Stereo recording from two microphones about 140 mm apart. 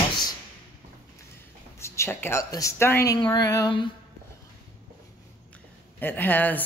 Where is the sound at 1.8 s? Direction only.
20° left (ahead or behind).